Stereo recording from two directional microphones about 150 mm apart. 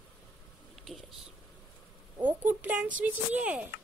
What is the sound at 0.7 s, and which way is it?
Whispering, centre (ahead or behind).